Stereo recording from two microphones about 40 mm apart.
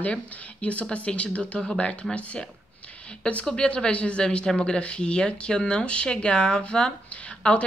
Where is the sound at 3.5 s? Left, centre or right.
Left.